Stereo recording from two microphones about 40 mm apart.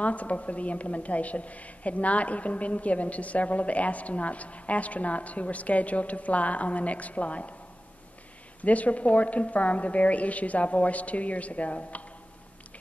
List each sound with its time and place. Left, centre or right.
0.0 s a woman's voice: left
8.5 s a woman's voice: left